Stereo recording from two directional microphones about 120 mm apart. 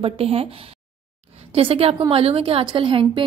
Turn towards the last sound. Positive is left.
turn(degrees=-45)  # may be behind; listen again after turning